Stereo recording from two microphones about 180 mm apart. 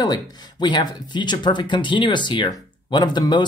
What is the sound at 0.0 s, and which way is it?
Speech, 25° left (ahead or behind).